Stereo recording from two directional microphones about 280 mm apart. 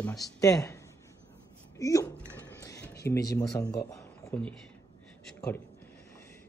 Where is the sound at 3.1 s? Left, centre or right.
Centre.